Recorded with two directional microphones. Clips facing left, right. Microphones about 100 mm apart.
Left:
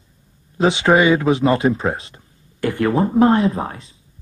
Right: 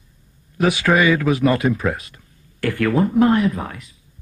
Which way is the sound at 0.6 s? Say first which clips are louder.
Left 2 dB; 25° left (ahead or behind).